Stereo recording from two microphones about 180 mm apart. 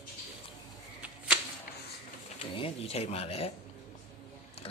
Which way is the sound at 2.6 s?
35° left (ahead or behind).